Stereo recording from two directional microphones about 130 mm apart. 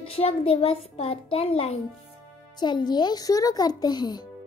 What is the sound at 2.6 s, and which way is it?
A child's voice, 35° left (ahead or behind).